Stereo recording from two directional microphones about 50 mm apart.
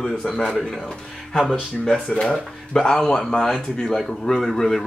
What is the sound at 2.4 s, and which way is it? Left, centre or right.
Speech, centre.